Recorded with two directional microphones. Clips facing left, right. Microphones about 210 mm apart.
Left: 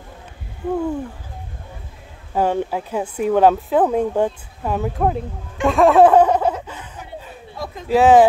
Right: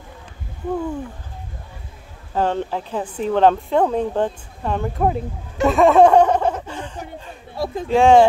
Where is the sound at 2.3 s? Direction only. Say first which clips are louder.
Left 2 dB; 10° left (ahead or behind).